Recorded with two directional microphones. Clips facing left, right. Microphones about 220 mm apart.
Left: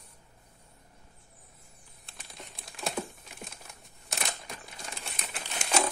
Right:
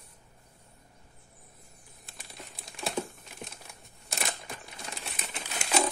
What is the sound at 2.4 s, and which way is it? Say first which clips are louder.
Typing: right 1 dB; centre (ahead or behind).